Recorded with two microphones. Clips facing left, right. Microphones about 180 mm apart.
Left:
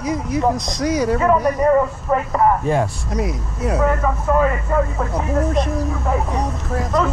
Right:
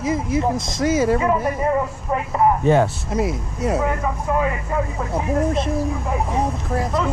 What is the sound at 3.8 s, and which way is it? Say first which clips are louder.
Speech: left 4 dB; 45° left (ahead or behind).